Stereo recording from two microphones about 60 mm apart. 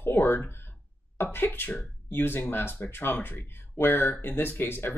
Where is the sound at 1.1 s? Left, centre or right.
Left.